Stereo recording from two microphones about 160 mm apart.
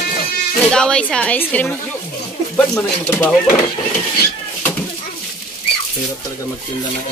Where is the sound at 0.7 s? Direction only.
5° left (ahead or behind).